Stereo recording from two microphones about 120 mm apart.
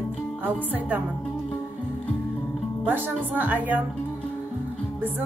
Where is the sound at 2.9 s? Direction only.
15° right (ahead or behind).